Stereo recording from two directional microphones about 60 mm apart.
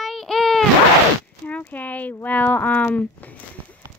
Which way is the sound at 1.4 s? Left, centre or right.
Left.